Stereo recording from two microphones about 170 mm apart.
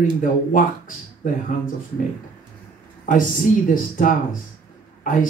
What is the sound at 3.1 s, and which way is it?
Speech, 50° left (ahead or behind).